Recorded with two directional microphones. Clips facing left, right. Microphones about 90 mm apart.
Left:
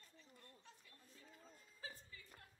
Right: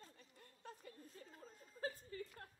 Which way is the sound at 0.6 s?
45° right (ahead or behind).